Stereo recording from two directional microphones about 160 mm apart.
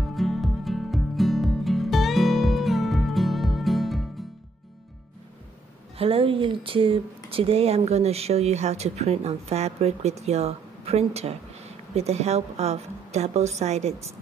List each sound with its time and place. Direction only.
0.0 s music: centre (ahead or behind)
5.9 s speech: 35° right (ahead or behind)